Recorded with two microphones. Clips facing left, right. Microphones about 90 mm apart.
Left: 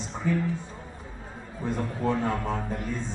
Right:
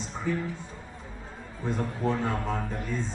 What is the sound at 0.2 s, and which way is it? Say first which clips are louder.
Speech: left 3 dB; 50° left (ahead or behind).